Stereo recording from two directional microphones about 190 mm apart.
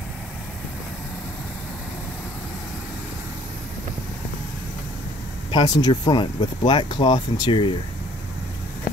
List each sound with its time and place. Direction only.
5.5 s speech: 20° left (ahead or behind)